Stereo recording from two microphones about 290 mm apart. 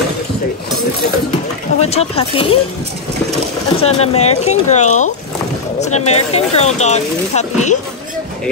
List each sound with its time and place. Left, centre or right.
1.8 s speech: left
3.7 s speech: left